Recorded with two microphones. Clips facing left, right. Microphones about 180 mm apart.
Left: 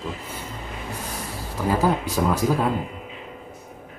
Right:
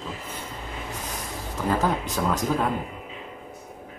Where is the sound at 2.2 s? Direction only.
10° left (ahead or behind).